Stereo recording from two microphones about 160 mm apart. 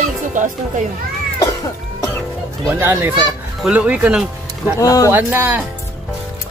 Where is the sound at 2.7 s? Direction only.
10° right (ahead or behind).